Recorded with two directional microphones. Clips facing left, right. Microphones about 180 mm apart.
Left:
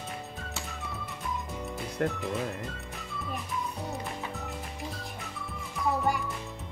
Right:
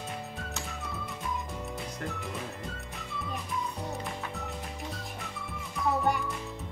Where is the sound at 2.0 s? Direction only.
65° left (ahead or behind).